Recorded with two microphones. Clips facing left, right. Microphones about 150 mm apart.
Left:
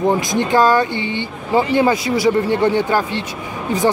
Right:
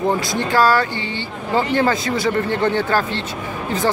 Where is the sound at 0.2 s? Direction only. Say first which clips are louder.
Left 2 dB; 20° left (ahead or behind).